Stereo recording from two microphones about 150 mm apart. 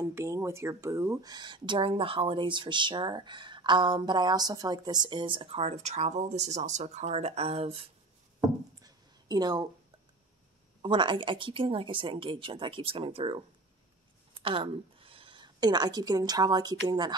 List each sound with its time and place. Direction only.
0.0 s speech: 20° right (ahead or behind); by 7.8 s 40° right (ahead or behind)
8.8 s a sound: 25° right (ahead or behind)
10.8 s speech: 35° right (ahead or behind)
14.4 s a woman's voice: 35° right (ahead or behind)